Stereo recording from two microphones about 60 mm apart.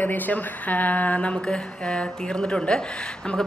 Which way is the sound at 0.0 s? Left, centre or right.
Left.